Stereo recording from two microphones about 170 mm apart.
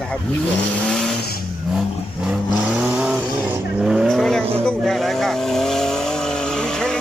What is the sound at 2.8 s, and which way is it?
Vehicle, 5° right (ahead or behind).